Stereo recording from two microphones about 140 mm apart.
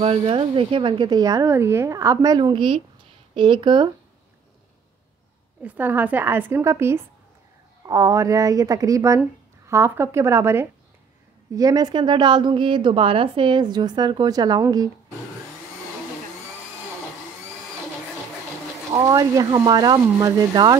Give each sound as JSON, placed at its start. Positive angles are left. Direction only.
{"t": 0.2, "sound": "a woman's voice", "side_deg": -35}
{"t": 5.6, "sound": "a woman's voice", "side_deg": -10}
{"t": 19.0, "sound": "a woman's voice", "side_deg": -25}